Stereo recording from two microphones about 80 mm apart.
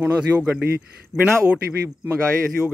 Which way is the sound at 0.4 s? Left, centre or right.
Right.